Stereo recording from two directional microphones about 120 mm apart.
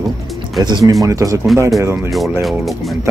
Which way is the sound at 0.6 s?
35° right (ahead or behind).